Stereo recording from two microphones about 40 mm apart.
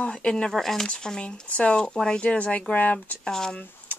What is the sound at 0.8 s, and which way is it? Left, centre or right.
Speech, left.